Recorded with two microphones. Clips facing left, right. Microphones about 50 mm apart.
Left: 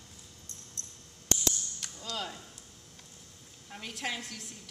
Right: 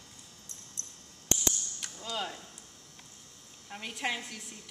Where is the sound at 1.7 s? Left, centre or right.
Centre.